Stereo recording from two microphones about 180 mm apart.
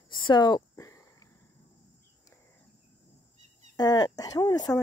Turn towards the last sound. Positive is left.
turn(degrees=20)  # may be behind; listen again after turning